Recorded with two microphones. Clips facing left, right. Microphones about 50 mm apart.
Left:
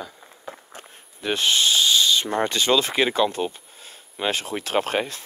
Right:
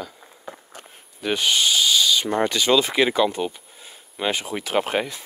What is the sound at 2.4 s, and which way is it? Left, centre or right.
Speech, left.